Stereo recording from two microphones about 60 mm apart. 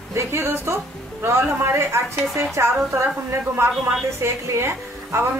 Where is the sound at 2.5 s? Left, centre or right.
Right.